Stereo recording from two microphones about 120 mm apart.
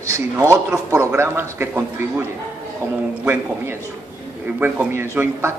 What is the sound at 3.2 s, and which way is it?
A man's voice, 15° right (ahead or behind).